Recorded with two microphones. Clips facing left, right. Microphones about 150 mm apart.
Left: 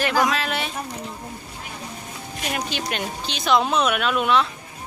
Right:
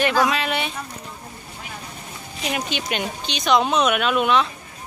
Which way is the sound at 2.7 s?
Centre (ahead or behind).